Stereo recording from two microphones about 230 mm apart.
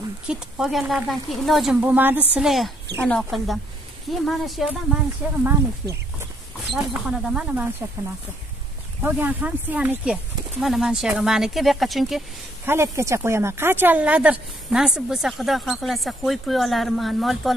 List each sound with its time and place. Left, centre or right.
0.3 s speech: centre
5.4 s speech: centre
6.7 s speech: centre
9.0 s speech: centre
12.6 s speech: centre